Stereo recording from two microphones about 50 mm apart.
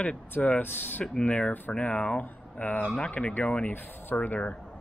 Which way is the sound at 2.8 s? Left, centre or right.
Centre.